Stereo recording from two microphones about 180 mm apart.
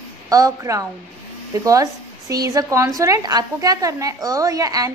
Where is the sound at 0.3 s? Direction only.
20° right (ahead or behind).